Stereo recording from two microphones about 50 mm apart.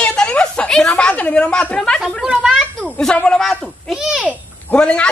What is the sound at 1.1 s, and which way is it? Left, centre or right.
Speech, left.